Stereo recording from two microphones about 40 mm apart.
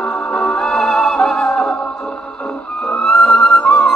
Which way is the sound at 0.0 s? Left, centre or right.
Left.